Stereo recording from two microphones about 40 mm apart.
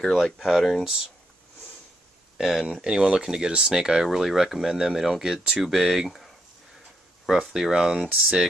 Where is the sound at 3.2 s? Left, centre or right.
Centre.